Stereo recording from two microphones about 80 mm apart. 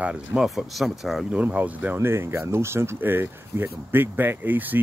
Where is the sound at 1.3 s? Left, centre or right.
Centre.